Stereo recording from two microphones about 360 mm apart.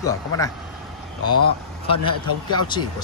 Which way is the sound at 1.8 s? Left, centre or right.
Centre.